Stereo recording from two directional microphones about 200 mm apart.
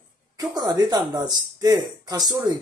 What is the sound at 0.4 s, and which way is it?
Speech, 20° right (ahead or behind).